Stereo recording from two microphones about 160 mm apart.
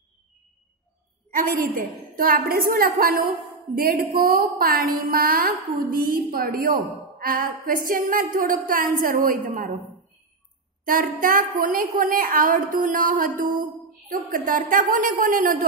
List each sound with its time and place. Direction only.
1.3 s a woman's voice: 60° right (ahead or behind)
10.9 s a woman's voice: 60° right (ahead or behind)